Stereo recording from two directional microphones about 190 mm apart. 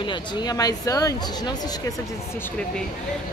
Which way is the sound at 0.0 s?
25° left (ahead or behind).